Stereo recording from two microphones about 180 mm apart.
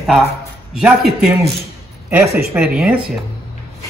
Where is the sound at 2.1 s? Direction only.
10° right (ahead or behind).